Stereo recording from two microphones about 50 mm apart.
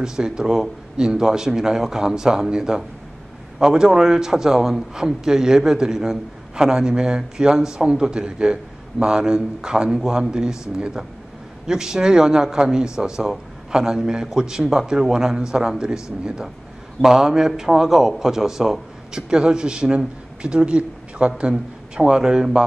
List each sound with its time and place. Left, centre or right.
0.0 s a man's voice: centre